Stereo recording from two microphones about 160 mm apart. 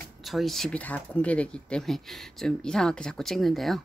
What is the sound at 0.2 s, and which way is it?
Speech, centre (ahead or behind).